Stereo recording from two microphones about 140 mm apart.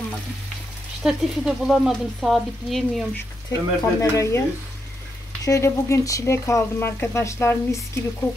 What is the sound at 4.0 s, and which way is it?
Speech, 20° left (ahead or behind).